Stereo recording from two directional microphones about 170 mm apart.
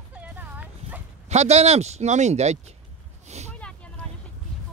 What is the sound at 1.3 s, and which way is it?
Speech, 40° right (ahead or behind).